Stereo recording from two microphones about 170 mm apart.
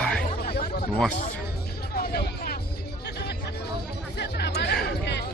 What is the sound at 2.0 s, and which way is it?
Music, 65° left (ahead or behind).